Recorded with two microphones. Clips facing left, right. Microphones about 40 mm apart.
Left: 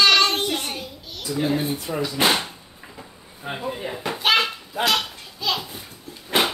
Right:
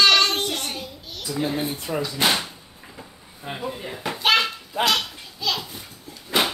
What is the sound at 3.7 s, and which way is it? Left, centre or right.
Speech, centre.